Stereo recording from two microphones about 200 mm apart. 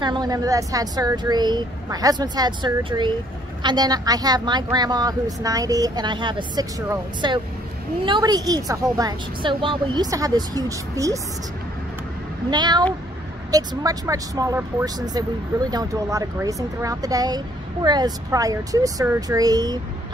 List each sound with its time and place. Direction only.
0.0 s a woman's voice: 20° right (ahead or behind)
12.4 s a woman's voice: 20° right (ahead or behind)